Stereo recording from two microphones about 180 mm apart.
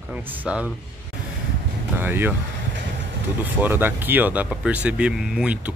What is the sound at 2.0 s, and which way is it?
Speech, 10° right (ahead or behind).